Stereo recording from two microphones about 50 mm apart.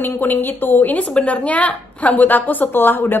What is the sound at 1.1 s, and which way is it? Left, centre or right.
A woman's voice, left.